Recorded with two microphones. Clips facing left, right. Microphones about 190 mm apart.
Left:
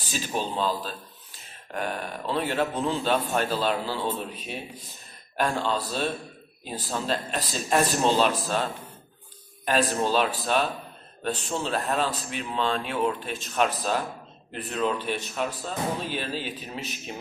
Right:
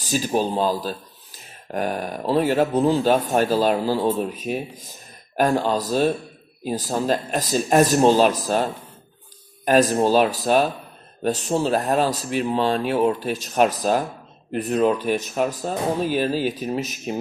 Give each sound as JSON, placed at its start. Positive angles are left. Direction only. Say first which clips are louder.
{"t": 0.1, "sound": "speech", "louder": "right 8 dB", "side_deg": -40}
{"t": 9.7, "sound": "speech", "louder": "right 7 dB", "side_deg": -40}